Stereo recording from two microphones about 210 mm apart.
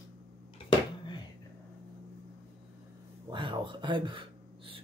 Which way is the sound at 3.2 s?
20° right (ahead or behind).